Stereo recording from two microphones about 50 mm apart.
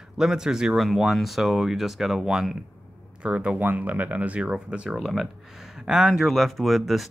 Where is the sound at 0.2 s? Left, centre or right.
Centre.